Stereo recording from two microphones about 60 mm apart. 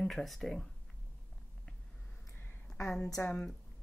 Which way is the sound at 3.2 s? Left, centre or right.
Left.